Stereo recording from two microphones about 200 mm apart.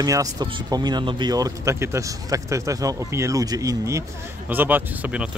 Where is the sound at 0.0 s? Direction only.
15° right (ahead or behind).